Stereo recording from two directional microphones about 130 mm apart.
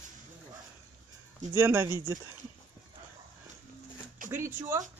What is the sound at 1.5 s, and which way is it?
Speech, 20° right (ahead or behind).